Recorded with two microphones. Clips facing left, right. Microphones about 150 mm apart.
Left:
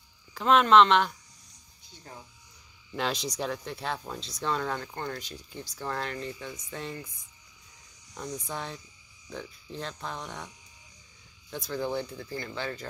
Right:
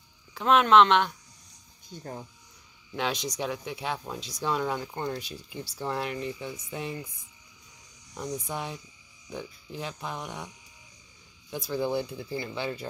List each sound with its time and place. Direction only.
0.3 s speech: centre (ahead or behind)
1.9 s speech: 45° right (ahead or behind)
2.9 s speech: centre (ahead or behind)
8.1 s speech: 10° right (ahead or behind)
11.7 s speech: 15° right (ahead or behind)